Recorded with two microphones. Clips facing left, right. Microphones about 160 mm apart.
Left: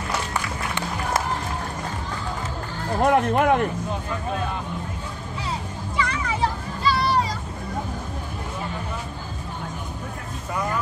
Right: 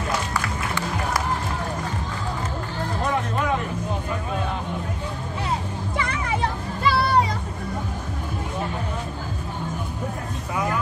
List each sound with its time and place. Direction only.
0.3 s music: 20° left (ahead or behind)
3.0 s music: 60° left (ahead or behind)
5.9 s music: 55° right (ahead or behind)